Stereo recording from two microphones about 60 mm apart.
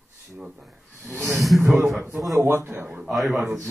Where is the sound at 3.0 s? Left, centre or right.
Centre.